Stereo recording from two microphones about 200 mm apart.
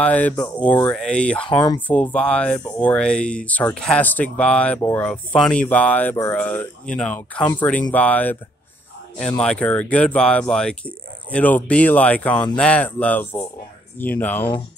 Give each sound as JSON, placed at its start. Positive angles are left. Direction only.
{"t": 0.0, "sound": "speech", "side_deg": 5}
{"t": 1.5, "sound": "speech", "side_deg": 20}
{"t": 1.9, "sound": "speech", "side_deg": 5}
{"t": 9.4, "sound": "speech", "side_deg": 5}